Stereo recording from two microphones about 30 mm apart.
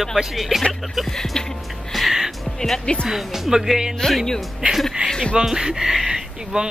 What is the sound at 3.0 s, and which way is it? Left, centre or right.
Speech, centre.